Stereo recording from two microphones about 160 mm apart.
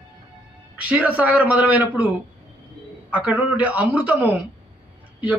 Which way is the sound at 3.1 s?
10° right (ahead or behind).